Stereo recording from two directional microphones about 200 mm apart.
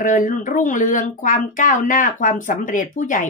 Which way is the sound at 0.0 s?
40° left (ahead or behind).